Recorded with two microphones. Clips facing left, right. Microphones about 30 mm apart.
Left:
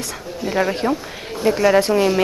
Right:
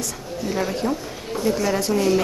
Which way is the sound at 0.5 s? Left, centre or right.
Left.